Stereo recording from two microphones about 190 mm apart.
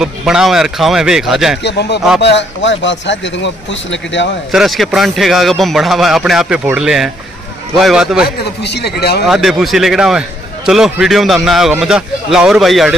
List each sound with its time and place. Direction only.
0.0 s a man's voice: 5° right (ahead or behind)
1.6 s a man's voice: 65° left (ahead or behind)
4.5 s a man's voice: centre (ahead or behind)
8.6 s a man's voice: 60° left (ahead or behind)
9.2 s a man's voice: centre (ahead or behind)